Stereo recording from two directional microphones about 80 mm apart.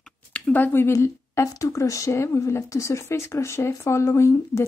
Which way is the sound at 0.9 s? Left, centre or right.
Left.